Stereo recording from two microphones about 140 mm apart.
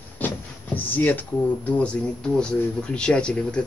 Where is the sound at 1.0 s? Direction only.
15° left (ahead or behind).